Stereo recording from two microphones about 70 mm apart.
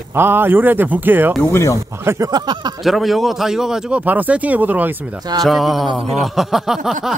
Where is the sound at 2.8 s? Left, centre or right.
Centre.